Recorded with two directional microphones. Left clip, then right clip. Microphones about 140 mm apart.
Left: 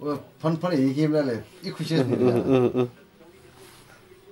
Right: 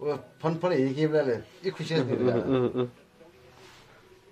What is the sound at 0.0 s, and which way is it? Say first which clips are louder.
Speech: left 2 dB; 30° right (ahead or behind).